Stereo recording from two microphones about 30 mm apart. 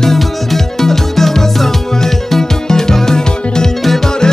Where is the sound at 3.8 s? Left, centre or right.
Centre.